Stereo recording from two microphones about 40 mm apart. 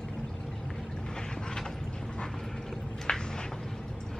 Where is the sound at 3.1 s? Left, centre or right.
Centre.